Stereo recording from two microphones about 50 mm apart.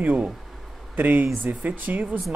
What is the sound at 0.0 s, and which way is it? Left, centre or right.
A woman's voice, right.